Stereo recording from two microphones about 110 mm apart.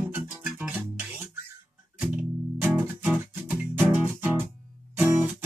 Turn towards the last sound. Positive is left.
turn(degrees=-15)  # may be behind; listen again after turning